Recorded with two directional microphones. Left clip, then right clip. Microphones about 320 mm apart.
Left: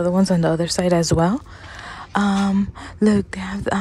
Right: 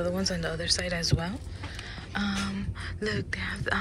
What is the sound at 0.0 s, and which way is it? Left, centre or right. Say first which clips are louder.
Speech: left 11 dB; centre.